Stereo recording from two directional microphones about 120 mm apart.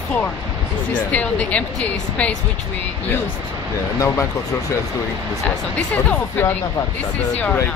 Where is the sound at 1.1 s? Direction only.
10° left (ahead or behind).